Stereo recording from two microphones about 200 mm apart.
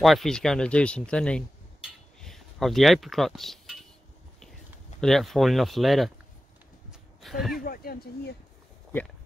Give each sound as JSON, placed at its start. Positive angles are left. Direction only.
{"t": 0.0, "sound": "speech", "side_deg": 0}
{"t": 5.0, "sound": "speech", "side_deg": 0}
{"t": 6.9, "sound": "a sound", "side_deg": 0}
{"t": 7.6, "sound": "speech", "side_deg": 45}